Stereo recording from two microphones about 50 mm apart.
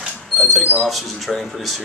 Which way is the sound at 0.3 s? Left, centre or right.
Centre.